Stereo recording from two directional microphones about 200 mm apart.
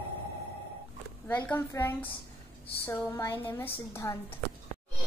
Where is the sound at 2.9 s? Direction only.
10° left (ahead or behind).